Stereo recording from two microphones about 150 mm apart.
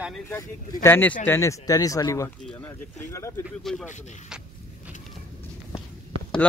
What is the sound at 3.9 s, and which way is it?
Speech, 50° left (ahead or behind).